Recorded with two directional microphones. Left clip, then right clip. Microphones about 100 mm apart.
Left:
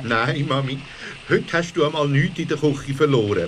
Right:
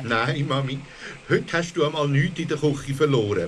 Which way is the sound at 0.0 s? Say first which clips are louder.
Left 3 dB; 25° right (ahead or behind).